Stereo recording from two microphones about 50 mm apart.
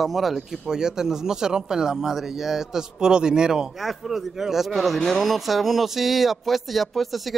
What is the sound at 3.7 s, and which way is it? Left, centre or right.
Speech, centre.